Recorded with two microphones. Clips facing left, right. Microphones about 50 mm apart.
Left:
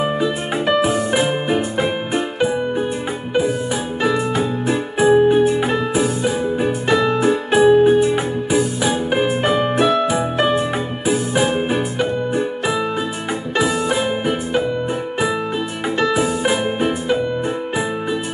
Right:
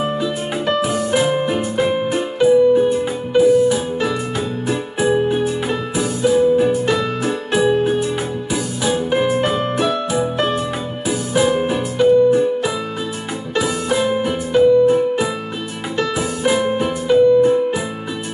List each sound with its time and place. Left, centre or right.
0.0 s music: centre
13.6 s music: centre
16.4 s music: centre